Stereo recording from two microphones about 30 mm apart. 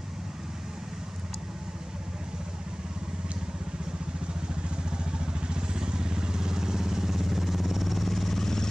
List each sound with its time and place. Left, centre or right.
4.6 s vehicle: right; by 8.6 s centre